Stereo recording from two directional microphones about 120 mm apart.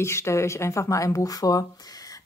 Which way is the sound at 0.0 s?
20° left (ahead or behind).